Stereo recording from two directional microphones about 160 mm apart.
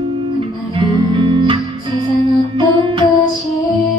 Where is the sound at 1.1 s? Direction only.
35° right (ahead or behind).